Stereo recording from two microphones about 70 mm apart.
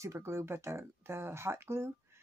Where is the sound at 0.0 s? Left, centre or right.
Right.